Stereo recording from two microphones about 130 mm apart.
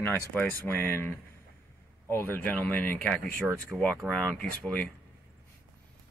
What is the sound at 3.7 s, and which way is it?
Speech, 5° right (ahead or behind).